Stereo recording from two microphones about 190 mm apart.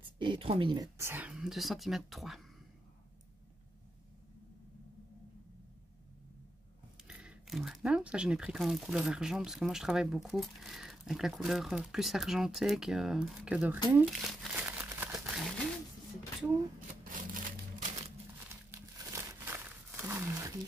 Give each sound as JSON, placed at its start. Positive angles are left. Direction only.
{"t": 0.2, "sound": "a sound", "side_deg": -25}
{"t": 0.9, "sound": "speech", "side_deg": -10}
{"t": 7.1, "sound": "speech", "side_deg": -5}
{"t": 13.9, "sound": "crumpling", "side_deg": 0}
{"t": 17.0, "sound": "crumpling", "side_deg": -45}
{"t": 18.5, "sound": "crumpling", "side_deg": -15}